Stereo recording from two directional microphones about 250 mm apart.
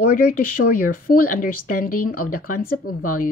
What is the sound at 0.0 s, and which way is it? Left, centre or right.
Speech, left.